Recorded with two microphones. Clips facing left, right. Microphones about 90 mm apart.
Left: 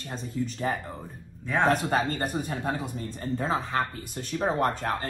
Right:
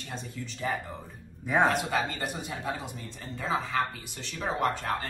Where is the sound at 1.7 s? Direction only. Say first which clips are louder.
Left 4 dB; 45° left (ahead or behind).